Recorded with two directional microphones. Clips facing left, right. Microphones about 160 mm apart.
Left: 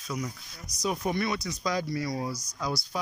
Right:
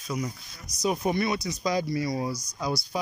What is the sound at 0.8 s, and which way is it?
Speech, 20° right (ahead or behind).